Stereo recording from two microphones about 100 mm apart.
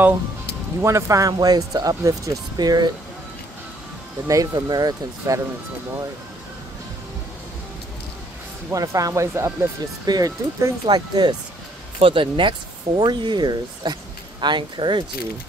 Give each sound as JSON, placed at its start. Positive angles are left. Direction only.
{"t": 0.8, "sound": "speech", "side_deg": -30}
{"t": 4.3, "sound": "speech", "side_deg": -40}
{"t": 8.7, "sound": "speech", "side_deg": -35}
{"t": 12.0, "sound": "speech", "side_deg": -60}